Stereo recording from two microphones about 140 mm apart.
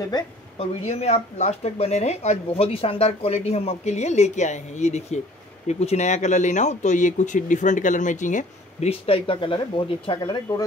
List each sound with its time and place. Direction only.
0.6 s speech: 50° left (ahead or behind); by 10.6 s 30° left (ahead or behind)